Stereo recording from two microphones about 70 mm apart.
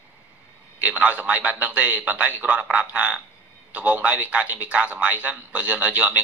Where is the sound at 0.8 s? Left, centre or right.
Right.